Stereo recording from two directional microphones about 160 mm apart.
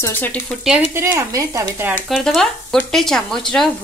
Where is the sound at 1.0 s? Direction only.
15° right (ahead or behind).